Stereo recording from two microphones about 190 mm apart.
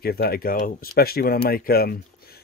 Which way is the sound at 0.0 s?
55° left (ahead or behind).